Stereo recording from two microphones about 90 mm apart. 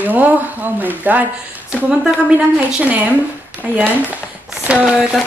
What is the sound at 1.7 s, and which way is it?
A woman's voice, 5° right (ahead or behind).